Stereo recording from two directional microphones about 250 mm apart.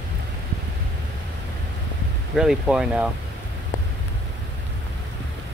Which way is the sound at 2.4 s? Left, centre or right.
Centre.